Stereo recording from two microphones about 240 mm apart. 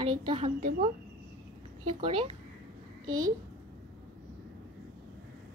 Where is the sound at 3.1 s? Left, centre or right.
Right.